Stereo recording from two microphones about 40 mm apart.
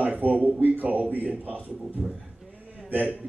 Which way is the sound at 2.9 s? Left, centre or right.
Right.